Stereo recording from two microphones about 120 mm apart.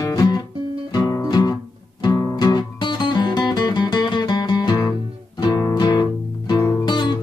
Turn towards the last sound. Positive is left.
turn(degrees=40)  # may be behind; listen again after turning